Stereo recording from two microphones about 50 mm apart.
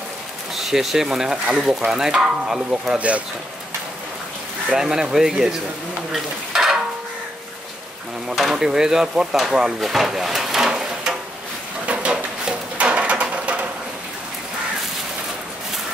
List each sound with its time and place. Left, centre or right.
0.6 s speech: centre
4.7 s speech: centre
6.1 s stir: centre
8.4 s speech: centre
11.8 s a sound: right